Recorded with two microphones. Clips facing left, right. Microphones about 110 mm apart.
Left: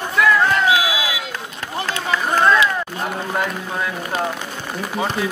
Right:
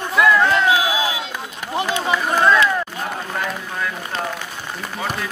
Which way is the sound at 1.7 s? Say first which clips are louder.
Right 3 dB; 20° right (ahead or behind).